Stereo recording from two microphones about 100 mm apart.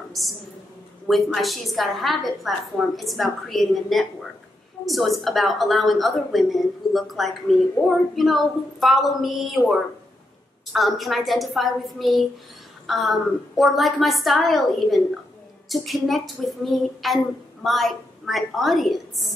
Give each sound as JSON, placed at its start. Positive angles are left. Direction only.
{"t": 1.0, "sound": "a woman's voice", "side_deg": 0}